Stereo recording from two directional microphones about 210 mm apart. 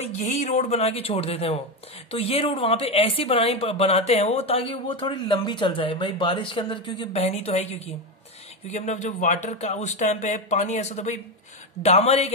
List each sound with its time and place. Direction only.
0.0 s speech: 35° left (ahead or behind)